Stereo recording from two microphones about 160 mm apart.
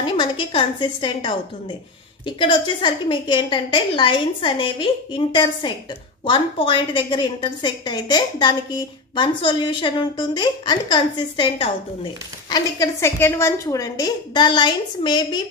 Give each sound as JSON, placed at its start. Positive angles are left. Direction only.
{"t": 0.0, "sound": "a woman's voice", "side_deg": 30}